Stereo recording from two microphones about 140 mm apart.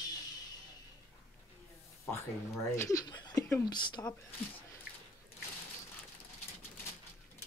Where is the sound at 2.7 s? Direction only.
25° left (ahead or behind).